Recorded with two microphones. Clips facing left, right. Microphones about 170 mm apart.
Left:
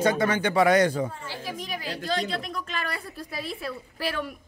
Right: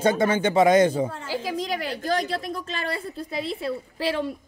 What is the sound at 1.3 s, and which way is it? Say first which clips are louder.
Speech: right 7 dB; 90° right.